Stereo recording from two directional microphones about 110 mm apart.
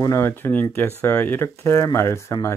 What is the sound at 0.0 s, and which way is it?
Speech, 25° left (ahead or behind).